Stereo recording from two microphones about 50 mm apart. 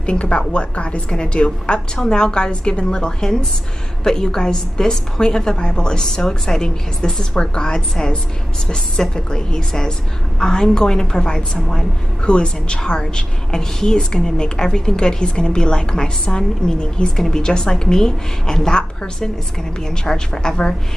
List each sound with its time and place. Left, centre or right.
0.0 s a woman's voice: left